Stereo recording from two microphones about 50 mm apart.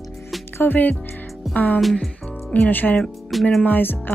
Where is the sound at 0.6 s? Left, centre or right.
Left.